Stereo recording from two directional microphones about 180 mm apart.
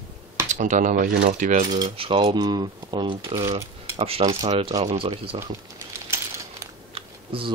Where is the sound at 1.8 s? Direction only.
30° right (ahead or behind).